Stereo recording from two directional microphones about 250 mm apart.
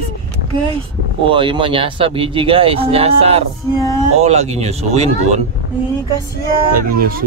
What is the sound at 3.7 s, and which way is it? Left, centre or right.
Speech, centre.